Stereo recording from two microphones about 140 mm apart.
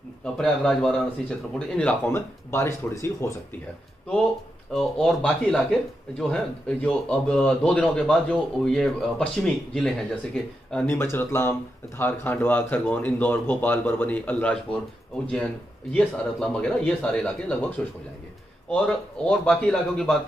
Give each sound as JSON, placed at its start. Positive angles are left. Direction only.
{"t": 0.2, "sound": "speech", "side_deg": 5}
{"t": 2.5, "sound": "speech", "side_deg": 20}
{"t": 4.7, "sound": "speech", "side_deg": 5}
{"t": 15.9, "sound": "speech", "side_deg": 10}